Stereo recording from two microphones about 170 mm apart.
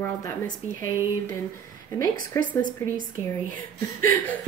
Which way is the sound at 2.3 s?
15° left (ahead or behind).